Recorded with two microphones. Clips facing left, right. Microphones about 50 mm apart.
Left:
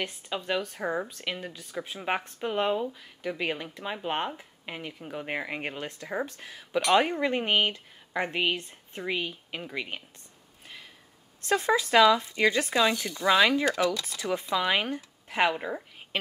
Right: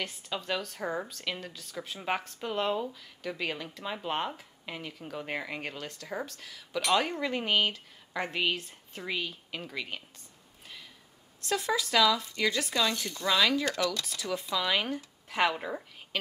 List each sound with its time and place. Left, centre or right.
0.0 s speech: centre
11.4 s speech: left; by 15.8 s centre